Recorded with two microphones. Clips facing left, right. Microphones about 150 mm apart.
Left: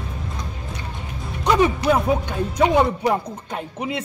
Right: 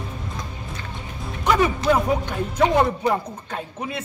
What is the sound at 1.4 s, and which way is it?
Speech, 20° left (ahead or behind).